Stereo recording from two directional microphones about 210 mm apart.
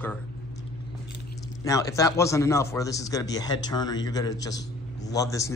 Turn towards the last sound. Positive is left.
turn(degrees=15)  # may be behind; listen again after turning